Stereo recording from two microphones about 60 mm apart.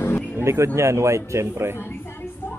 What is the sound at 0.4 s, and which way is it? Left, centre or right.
Speech, right.